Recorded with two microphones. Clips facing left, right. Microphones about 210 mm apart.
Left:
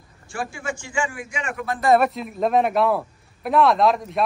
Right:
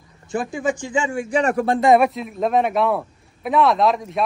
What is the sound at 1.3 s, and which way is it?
Speech, 35° right (ahead or behind).